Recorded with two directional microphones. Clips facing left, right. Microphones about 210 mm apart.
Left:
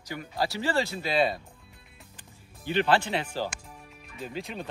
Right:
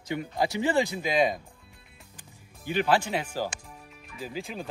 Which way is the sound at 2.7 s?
10° right (ahead or behind).